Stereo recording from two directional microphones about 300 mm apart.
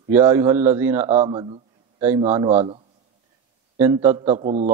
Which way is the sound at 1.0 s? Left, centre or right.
Centre.